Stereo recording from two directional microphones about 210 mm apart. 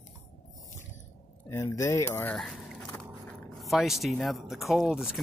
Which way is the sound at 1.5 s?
15° left (ahead or behind).